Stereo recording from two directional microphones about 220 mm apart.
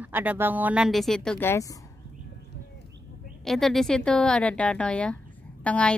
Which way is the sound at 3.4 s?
Centre (ahead or behind).